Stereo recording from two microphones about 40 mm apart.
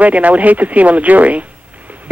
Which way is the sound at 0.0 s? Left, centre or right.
Right.